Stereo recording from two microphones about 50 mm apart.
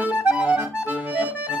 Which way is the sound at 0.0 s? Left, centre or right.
Right.